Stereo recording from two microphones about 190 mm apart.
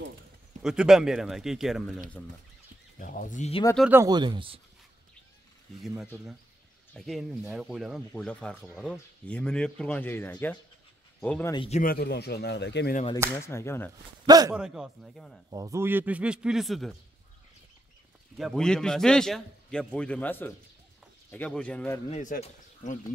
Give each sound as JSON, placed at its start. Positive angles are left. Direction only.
{"t": 0.6, "sound": "speech", "side_deg": -5}
{"t": 3.0, "sound": "speech", "side_deg": 45}
{"t": 3.9, "sound": "speech", "side_deg": -20}
{"t": 6.9, "sound": "speech", "side_deg": 0}
{"t": 11.5, "sound": "a man's voice", "side_deg": 30}
{"t": 11.8, "sound": "speech", "side_deg": 55}
{"t": 13.4, "sound": "speech", "side_deg": 15}
{"t": 14.2, "sound": "speech", "side_deg": -20}
{"t": 14.5, "sound": "speech", "side_deg": -5}
{"t": 15.5, "sound": "a man's voice", "side_deg": -15}
{"t": 18.4, "sound": "speech", "side_deg": 5}
{"t": 22.1, "sound": "speech", "side_deg": 40}